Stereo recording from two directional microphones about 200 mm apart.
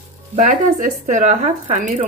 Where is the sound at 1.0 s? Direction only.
40° right (ahead or behind).